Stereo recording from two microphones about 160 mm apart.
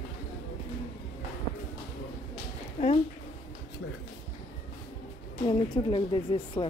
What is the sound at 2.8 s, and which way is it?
Speech, 50° left (ahead or behind).